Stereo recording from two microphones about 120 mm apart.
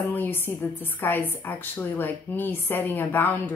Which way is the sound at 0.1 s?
15° left (ahead or behind).